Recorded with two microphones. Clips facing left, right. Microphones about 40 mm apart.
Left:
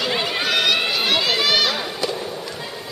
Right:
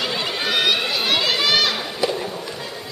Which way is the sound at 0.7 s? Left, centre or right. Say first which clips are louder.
Left 1 dB; centre.